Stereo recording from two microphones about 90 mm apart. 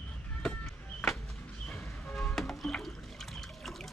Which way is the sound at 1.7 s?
Centre (ahead or behind).